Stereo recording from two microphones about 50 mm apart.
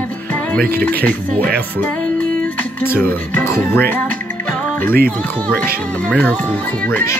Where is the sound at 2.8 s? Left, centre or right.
Left.